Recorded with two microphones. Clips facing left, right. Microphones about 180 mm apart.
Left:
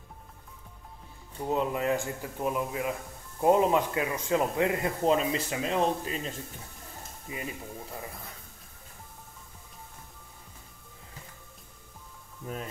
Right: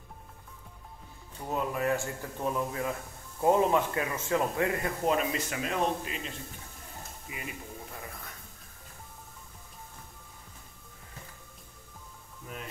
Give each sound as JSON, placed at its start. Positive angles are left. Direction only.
{"t": 1.5, "sound": "speech", "side_deg": 20}